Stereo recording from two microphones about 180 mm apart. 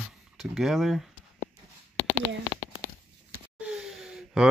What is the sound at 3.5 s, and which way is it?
Gasp, 5° right (ahead or behind).